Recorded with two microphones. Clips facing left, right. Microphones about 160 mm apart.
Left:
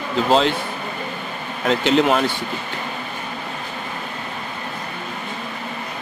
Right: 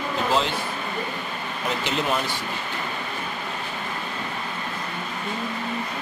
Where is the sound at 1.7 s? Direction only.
80° left.